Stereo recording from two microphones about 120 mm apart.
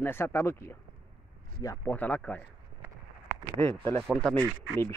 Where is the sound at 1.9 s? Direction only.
15° left (ahead or behind).